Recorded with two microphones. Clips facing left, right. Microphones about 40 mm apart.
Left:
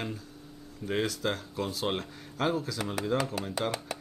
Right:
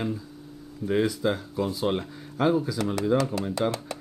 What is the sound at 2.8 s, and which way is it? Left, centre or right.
Speech, centre.